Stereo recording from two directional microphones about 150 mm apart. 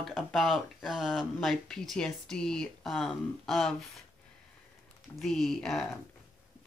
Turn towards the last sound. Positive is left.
turn(degrees=0)  # may be behind; listen again after turning